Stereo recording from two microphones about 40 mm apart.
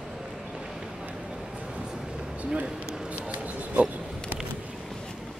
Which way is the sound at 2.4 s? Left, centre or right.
Right.